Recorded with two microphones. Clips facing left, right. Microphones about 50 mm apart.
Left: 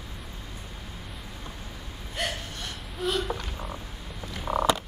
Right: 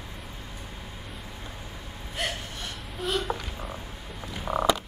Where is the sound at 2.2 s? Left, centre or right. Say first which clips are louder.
Even; centre.